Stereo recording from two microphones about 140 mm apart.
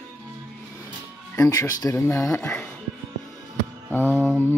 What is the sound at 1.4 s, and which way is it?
Speech, 25° left (ahead or behind).